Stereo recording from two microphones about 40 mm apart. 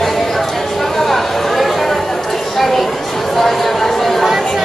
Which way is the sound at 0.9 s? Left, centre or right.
Centre.